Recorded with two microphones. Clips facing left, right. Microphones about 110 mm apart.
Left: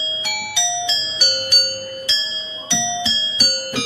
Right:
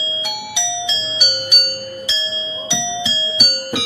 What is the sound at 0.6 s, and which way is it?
Music, 15° right (ahead or behind).